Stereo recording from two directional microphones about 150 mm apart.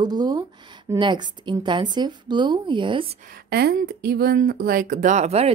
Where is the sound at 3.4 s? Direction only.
90° right.